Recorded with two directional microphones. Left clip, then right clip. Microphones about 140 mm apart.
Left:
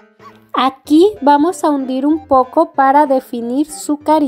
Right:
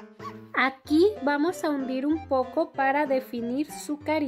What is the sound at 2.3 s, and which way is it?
A woman's voice, 25° left (ahead or behind).